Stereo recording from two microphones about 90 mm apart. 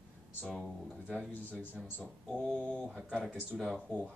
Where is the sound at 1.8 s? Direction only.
20° left (ahead or behind).